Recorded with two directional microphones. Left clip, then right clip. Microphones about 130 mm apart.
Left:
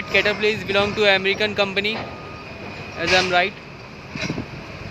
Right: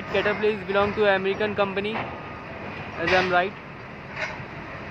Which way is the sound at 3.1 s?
20° left (ahead or behind).